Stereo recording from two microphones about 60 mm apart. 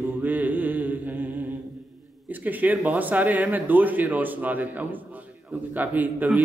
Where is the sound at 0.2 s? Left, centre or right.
Right.